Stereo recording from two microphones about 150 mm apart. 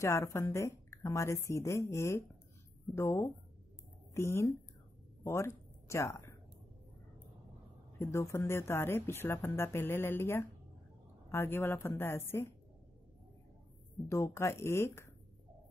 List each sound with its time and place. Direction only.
0.0 s speech: 20° left (ahead or behind)
5.2 s a sound: 20° left (ahead or behind)
8.0 s speech: 20° left (ahead or behind)
14.0 s speech: 20° left (ahead or behind)